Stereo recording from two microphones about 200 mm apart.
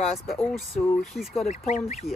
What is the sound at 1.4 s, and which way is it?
Speech, 35° left (ahead or behind).